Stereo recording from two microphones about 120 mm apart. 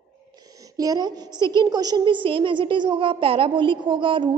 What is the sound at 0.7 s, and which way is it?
A woman's voice, 30° right (ahead or behind).